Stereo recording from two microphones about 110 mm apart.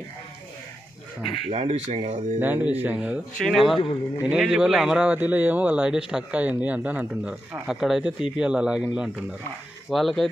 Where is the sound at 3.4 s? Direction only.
Centre (ahead or behind).